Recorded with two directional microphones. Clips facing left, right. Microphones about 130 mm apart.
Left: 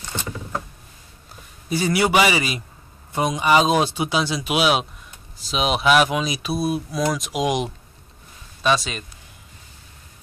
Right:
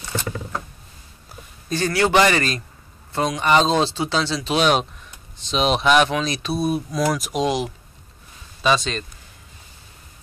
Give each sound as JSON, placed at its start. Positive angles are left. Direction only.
{"t": 1.7, "sound": "speech", "side_deg": 10}
{"t": 7.3, "sound": "speech", "side_deg": 15}
{"t": 8.6, "sound": "speech", "side_deg": 5}